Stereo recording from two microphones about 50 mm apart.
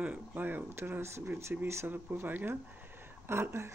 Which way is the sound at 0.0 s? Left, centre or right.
Right.